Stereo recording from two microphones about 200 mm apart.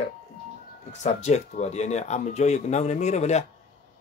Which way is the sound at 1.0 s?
35° left (ahead or behind).